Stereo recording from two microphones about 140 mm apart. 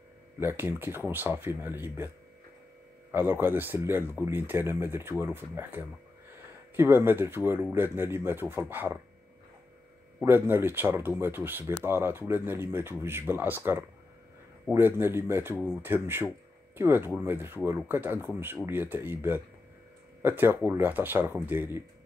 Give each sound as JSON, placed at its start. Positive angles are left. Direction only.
{"t": 0.4, "sound": "speech", "side_deg": -15}
{"t": 3.1, "sound": "speech", "side_deg": -15}
{"t": 10.2, "sound": "speech", "side_deg": -15}